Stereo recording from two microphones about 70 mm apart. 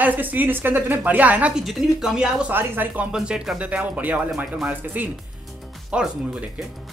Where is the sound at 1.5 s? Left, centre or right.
Centre.